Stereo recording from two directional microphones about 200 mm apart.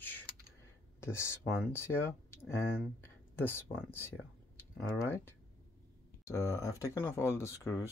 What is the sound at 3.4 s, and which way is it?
Speech, 10° left (ahead or behind).